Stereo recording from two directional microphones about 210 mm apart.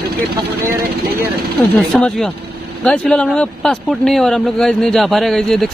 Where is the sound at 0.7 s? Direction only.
45° right (ahead or behind).